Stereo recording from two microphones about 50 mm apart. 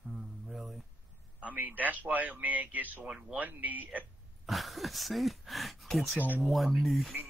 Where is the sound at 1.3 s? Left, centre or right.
Right.